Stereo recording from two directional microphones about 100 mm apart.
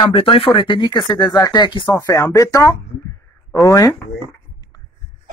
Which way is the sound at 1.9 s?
35° left (ahead or behind).